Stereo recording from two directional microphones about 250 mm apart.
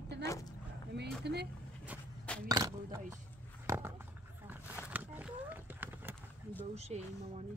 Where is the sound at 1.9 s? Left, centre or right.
Centre.